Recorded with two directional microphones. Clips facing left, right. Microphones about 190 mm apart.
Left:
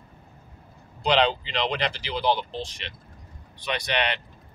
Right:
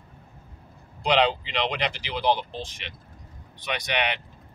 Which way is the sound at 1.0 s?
15° right (ahead or behind).